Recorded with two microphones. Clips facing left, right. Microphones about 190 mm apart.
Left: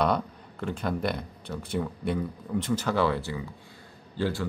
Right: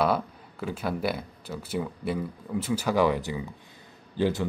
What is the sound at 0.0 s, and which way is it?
Speech, 5° right (ahead or behind).